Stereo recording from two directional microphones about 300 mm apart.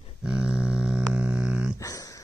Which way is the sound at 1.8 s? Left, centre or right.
Centre.